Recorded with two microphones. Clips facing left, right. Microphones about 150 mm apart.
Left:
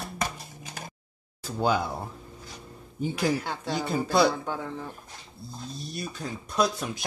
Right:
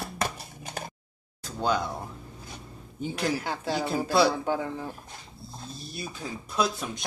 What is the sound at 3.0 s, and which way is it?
Speech, centre (ahead or behind).